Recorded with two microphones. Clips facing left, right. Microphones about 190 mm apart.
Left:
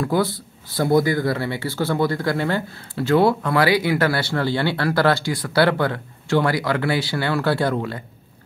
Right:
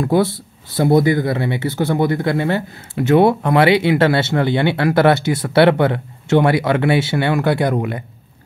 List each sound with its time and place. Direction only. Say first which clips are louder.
0.0 s speech: right 5 dB; 25° right (ahead or behind)